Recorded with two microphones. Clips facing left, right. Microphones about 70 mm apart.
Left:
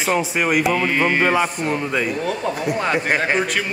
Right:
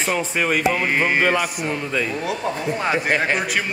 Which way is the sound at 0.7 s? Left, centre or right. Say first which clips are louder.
Left 1 dB; centre.